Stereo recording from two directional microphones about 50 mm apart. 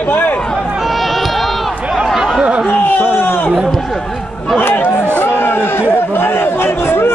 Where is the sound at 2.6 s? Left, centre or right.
Left.